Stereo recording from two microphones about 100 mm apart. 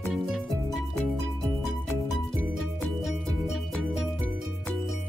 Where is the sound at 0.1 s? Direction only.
5° right (ahead or behind).